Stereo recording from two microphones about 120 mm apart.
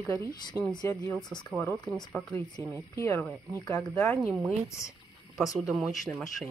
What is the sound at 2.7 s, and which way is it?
Speech, 25° left (ahead or behind).